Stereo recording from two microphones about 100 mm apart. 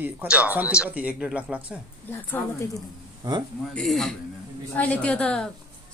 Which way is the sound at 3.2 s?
45° right (ahead or behind).